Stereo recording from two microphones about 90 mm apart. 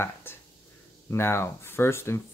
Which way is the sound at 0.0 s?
25° left (ahead or behind).